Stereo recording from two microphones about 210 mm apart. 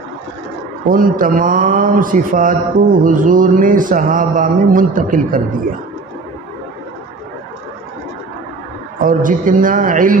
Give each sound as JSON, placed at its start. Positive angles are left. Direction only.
{"t": 0.8, "sound": "a man's voice", "side_deg": -40}
{"t": 9.0, "sound": "a man's voice", "side_deg": -40}